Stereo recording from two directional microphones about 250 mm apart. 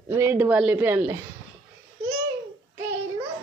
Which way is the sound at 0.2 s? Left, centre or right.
Centre.